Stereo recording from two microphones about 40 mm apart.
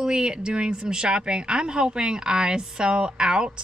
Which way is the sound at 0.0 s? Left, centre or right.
Right.